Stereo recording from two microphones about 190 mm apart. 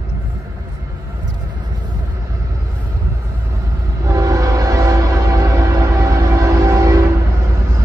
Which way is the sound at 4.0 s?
20° right (ahead or behind).